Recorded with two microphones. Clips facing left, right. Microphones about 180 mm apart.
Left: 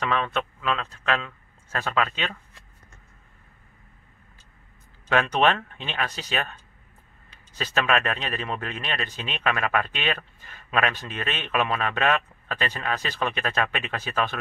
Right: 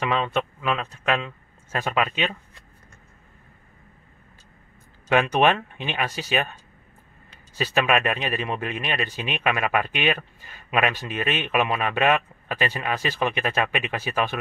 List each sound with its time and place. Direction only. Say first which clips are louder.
0.0 s a man's voice: right 2 dB; 15° right (ahead or behind)
5.1 s a man's voice: right 2 dB; 10° right (ahead or behind)
7.5 s a man's voice: right 3 dB; 10° right (ahead or behind)